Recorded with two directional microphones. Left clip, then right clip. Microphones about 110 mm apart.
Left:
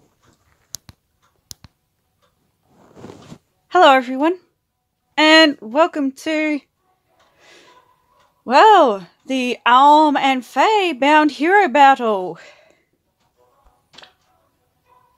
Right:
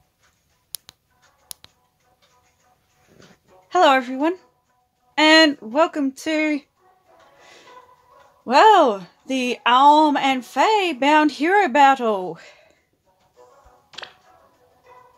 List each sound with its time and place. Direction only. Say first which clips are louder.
3.6 s speech: left 4 dB; 20° left (ahead or behind)
5.1 s a sound: left 2 dB; 20° left (ahead or behind)
5.7 s speech: left 3 dB; 20° left (ahead or behind)
7.3 s a sound: left 1 dB; 20° left (ahead or behind)
8.5 s speech: left 3 dB; 20° left (ahead or behind)
13.4 s music: right 7 dB; 25° right (ahead or behind)